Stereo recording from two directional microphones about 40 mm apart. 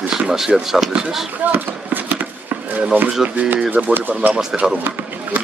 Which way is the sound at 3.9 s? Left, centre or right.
Right.